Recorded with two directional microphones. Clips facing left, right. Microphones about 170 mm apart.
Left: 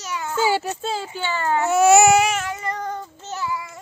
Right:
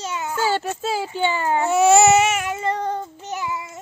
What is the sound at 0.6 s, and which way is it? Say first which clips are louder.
Speech: right 2 dB; 5° right (ahead or behind).